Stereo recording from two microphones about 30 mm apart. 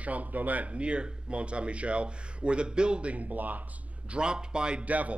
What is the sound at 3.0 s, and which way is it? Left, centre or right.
Speech, right.